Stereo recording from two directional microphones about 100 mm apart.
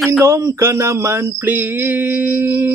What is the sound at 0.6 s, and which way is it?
Mantra, 25° right (ahead or behind).